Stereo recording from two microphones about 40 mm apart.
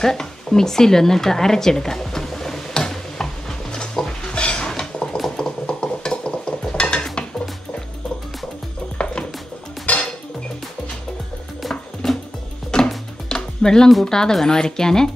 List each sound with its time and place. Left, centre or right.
0.0 s speech: centre
2.7 s a sound: centre
4.3 s dishes: left
4.6 s a sound: centre
5.4 s ratchet: centre
6.7 s dishes: left
8.9 s music: left
9.9 s music: left
12.0 s music: centre
12.7 s music: centre
14.0 s speech: centre